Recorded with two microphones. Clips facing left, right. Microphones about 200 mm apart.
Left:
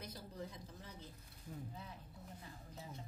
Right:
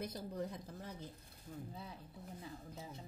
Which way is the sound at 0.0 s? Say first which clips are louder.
Right 7 dB; 55° right (ahead or behind).